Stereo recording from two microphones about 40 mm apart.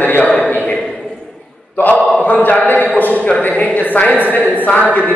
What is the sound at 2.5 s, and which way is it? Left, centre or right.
A man's voice, left.